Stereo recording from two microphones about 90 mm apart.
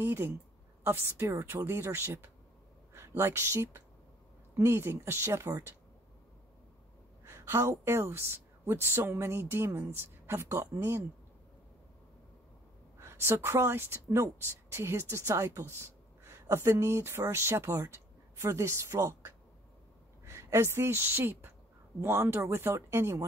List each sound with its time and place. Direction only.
0.0 s a woman's voice: 30° right (ahead or behind)
7.2 s speech: 30° right (ahead or behind)
13.0 s a woman's voice: 30° right (ahead or behind)